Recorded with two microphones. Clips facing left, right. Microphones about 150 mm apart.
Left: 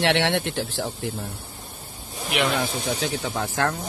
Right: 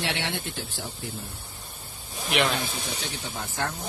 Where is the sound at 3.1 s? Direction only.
75° left (ahead or behind).